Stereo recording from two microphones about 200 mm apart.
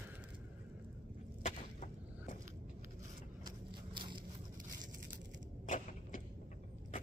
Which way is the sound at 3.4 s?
25° right (ahead or behind).